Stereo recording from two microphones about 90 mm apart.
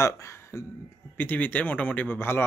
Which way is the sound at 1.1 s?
20° left (ahead or behind).